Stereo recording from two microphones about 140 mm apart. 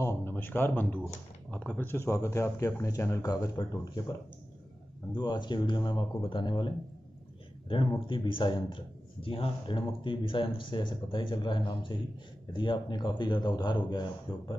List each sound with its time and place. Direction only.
0.0 s speech: 15° left (ahead or behind)
5.1 s speech: 30° left (ahead or behind)